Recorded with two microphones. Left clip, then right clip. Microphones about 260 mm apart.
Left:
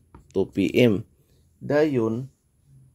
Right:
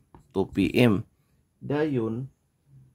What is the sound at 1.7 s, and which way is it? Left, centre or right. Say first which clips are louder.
Speech: left 6 dB; centre.